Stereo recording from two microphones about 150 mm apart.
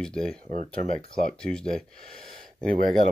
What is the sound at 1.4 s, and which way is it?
Speech, 5° left (ahead or behind).